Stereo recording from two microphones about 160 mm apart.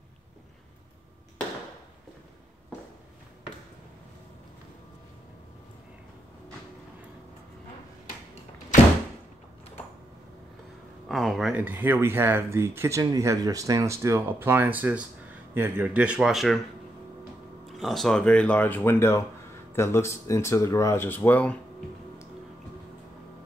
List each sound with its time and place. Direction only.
8.7 s door: 55° left (ahead or behind)
11.1 s speech: centre (ahead or behind)
17.6 s speech: centre (ahead or behind)